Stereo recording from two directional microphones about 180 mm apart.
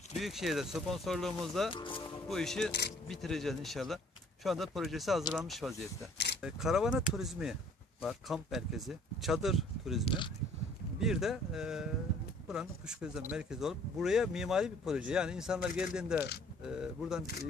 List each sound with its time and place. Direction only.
0.2 s speech: centre (ahead or behind)
1.7 s speech: 30° left (ahead or behind)
2.2 s speech: centre (ahead or behind)
6.1 s mechanisms: 70° left (ahead or behind)
6.4 s speech: 5° right (ahead or behind)
10.0 s speech: 25° left (ahead or behind)
11.0 s speech: centre (ahead or behind)